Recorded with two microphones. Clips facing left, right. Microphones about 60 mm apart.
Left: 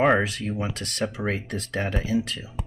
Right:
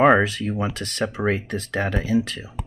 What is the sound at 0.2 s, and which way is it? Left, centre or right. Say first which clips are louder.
Speech: right 4 dB; right.